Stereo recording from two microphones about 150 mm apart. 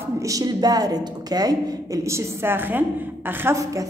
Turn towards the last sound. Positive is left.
turn(degrees=-20)  # may be behind; listen again after turning